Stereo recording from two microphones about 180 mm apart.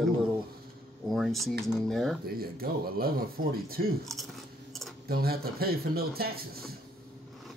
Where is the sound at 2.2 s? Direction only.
55° right (ahead or behind).